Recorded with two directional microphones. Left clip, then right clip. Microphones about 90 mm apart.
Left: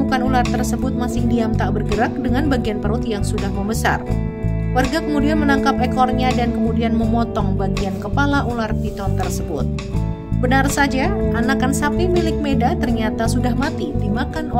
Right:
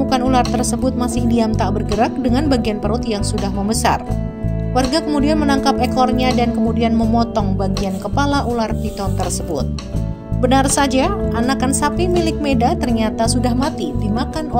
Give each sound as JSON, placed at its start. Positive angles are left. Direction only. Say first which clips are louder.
{"t": 0.1, "sound": "music", "louder": "right 3 dB", "side_deg": -50}
{"t": 0.6, "sound": "speech", "louder": "right 3 dB", "side_deg": -45}
{"t": 5.1, "sound": "speech", "louder": "left 1 dB", "side_deg": -35}
{"t": 6.9, "sound": "music", "louder": "right 3 dB", "side_deg": -25}
{"t": 8.2, "sound": "speech", "louder": "right 2 dB", "side_deg": -35}
{"t": 10.4, "sound": "speech", "louder": "right 2 dB", "side_deg": -50}
{"t": 11.3, "sound": "speech", "louder": "right 1 dB", "side_deg": -40}
{"t": 12.0, "sound": "speech", "louder": "right 1 dB", "side_deg": -50}